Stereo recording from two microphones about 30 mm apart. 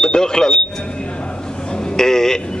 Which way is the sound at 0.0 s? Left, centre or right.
Left.